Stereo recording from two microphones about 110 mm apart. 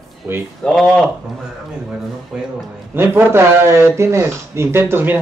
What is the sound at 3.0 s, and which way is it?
A man's voice, 20° right (ahead or behind).